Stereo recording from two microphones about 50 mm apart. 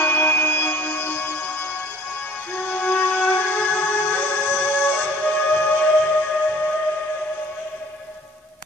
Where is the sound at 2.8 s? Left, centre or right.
Left.